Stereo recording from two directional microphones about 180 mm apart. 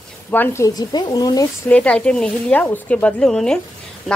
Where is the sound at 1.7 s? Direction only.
5° left (ahead or behind).